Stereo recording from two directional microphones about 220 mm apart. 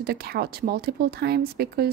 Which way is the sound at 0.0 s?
45° right (ahead or behind).